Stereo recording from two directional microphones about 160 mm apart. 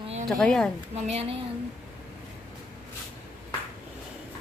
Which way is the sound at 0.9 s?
40° right (ahead or behind).